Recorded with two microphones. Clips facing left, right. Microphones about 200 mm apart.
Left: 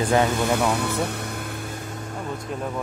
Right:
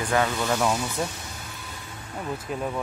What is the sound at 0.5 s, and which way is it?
Speech, 60° left (ahead or behind).